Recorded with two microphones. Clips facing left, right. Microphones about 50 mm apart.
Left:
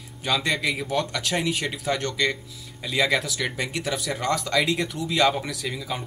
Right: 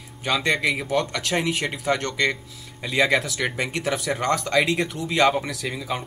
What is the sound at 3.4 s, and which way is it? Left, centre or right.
Speech, centre.